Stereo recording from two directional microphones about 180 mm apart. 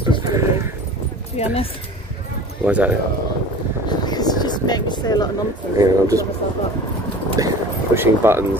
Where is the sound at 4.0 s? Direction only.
20° left (ahead or behind).